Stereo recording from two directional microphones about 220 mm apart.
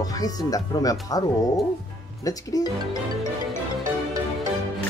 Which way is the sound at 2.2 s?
15° left (ahead or behind).